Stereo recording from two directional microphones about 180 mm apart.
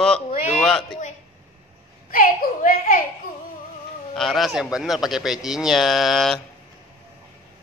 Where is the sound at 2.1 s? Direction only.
50° left (ahead or behind).